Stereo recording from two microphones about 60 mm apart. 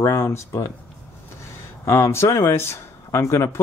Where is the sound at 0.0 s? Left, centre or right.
Left.